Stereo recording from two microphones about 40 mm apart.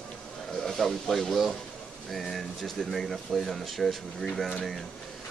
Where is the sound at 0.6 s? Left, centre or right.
Centre.